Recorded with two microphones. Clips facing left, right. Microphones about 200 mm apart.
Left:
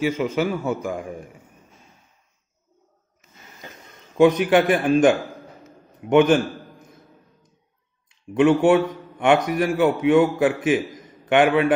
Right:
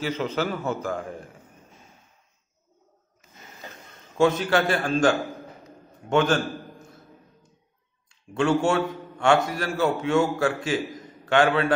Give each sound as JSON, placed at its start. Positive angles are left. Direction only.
{"t": 0.0, "sound": "a man's voice", "side_deg": 10}
{"t": 4.2, "sound": "a man's voice", "side_deg": 15}
{"t": 8.1, "sound": "a man's voice", "side_deg": 20}